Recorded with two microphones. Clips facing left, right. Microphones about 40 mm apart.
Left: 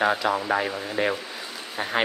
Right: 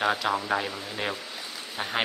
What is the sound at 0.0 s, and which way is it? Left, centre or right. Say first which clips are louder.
Speech: left 3 dB; centre.